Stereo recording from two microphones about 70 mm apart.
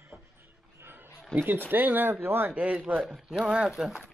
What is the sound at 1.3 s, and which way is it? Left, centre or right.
Speech, centre.